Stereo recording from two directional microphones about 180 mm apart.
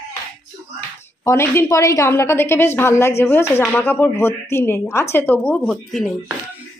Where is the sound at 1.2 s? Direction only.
15° left (ahead or behind).